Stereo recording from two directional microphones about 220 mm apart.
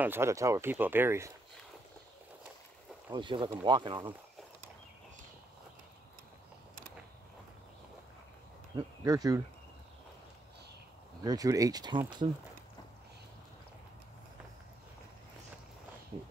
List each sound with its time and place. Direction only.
0.0 s speech: 10° right (ahead or behind)
3.1 s speech: 20° right (ahead or behind)
8.7 s speech: 15° right (ahead or behind)
11.2 s speech: 15° right (ahead or behind)